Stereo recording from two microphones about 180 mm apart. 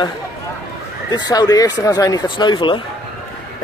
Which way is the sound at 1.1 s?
20° left (ahead or behind).